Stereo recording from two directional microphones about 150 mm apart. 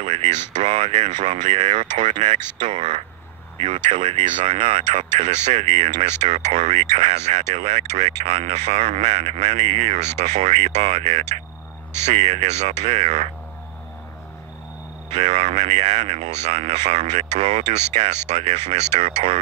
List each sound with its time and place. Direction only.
0.0 s a sound: 50° right (ahead or behind)
0.6 s speech: 50° right (ahead or behind)
15.1 s speech: 50° right (ahead or behind)